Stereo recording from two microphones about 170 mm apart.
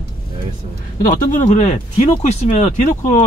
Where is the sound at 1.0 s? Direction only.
55° left (ahead or behind).